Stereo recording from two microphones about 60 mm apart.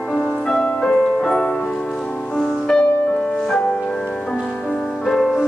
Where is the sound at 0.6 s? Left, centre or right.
Centre.